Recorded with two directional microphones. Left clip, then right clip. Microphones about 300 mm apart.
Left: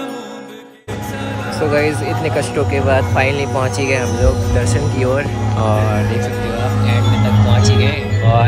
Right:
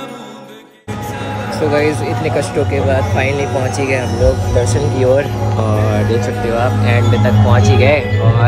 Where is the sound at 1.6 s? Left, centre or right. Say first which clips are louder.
Right 1 dB; centre.